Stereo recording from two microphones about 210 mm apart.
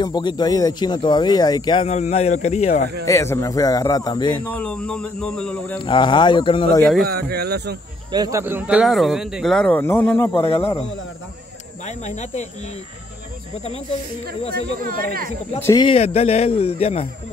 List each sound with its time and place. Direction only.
0.0 s speech: 20° left (ahead or behind)
3.1 s speech: 15° left (ahead or behind)
4.5 s speech: 5° left (ahead or behind)
5.9 s speech: 20° left (ahead or behind)
7.1 s speech: 50° right (ahead or behind)
8.1 s speech: 15° right (ahead or behind); by 10.4 s 10° left (ahead or behind)
10.4 s speech: 30° left (ahead or behind)
11.8 s speech: 35° left (ahead or behind)
14.8 s speech: 45° right (ahead or behind)
15.6 s speech: 20° left (ahead or behind)